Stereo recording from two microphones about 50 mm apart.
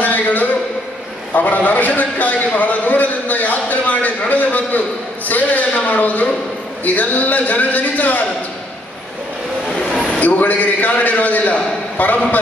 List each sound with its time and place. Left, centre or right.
0.0 s a sound: left
1.3 s a man's voice: left
10.2 s a man's voice: left